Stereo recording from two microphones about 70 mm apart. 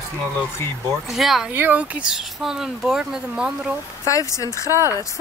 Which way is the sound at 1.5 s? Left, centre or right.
Right.